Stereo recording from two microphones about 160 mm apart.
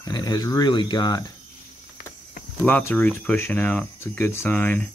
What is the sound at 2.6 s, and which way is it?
Speech, 10° left (ahead or behind).